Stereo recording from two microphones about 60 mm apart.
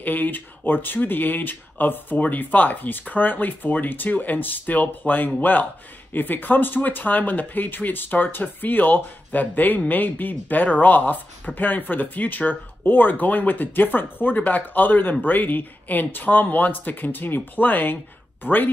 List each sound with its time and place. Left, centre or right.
0.0 s speech: left